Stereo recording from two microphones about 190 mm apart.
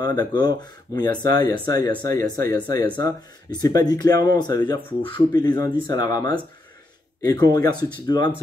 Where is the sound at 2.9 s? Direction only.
20° left (ahead or behind).